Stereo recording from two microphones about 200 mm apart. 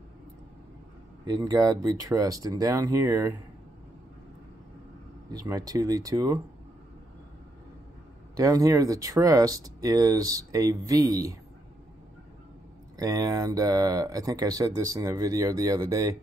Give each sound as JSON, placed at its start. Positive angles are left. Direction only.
{"t": 1.2, "sound": "speech", "side_deg": -20}
{"t": 5.3, "sound": "speech", "side_deg": -20}
{"t": 8.4, "sound": "speech", "side_deg": -15}
{"t": 12.9, "sound": "speech", "side_deg": -15}